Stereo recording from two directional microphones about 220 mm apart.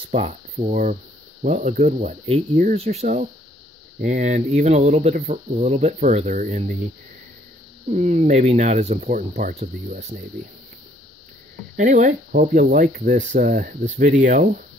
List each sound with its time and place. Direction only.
0.1 s speech: 30° right (ahead or behind)
7.9 s speech: 30° right (ahead or behind)
11.7 s speech: 35° right (ahead or behind)